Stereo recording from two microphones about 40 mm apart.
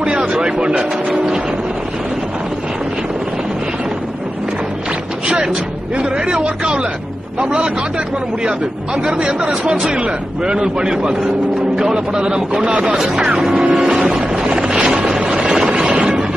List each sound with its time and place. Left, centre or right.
0.3 s a man's voice: right
5.9 s a man's voice: right
9.0 s a man's voice: centre
13.7 s music: centre
14.4 s vehicle: centre
15.7 s a sound: centre